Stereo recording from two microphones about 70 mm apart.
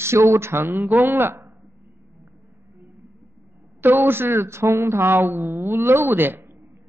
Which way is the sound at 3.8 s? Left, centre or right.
Right.